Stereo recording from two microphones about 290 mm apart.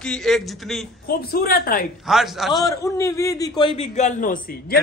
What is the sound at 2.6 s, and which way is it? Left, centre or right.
A man's voice, centre.